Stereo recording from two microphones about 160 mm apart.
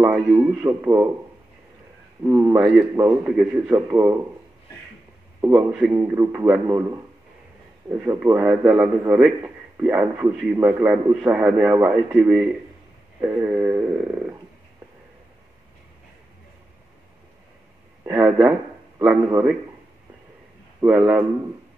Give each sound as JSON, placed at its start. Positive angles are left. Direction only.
{"t": 0.0, "sound": "a man's voice", "side_deg": -10}
{"t": 2.2, "sound": "a man's voice", "side_deg": -20}
{"t": 5.4, "sound": "a man's voice", "side_deg": -20}
{"t": 5.7, "sound": "a man's voice", "side_deg": -5}
{"t": 5.9, "sound": "a man's voice", "side_deg": -15}
{"t": 18.0, "sound": "a man's voice", "side_deg": -10}
{"t": 20.8, "sound": "a man's voice", "side_deg": -5}